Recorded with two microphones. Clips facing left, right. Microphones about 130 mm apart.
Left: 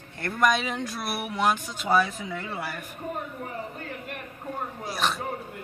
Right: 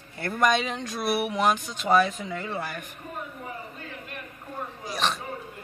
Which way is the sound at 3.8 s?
55° left (ahead or behind).